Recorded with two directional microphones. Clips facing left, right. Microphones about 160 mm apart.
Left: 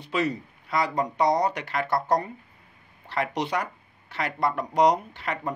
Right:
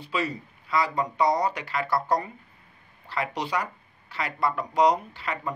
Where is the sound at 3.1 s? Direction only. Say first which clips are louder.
Left 2 dB; 55° left (ahead or behind).